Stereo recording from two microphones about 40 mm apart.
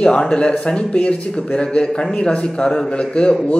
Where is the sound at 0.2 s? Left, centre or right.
Left.